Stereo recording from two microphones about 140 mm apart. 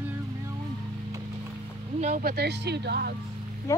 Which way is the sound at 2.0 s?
65° right (ahead or behind).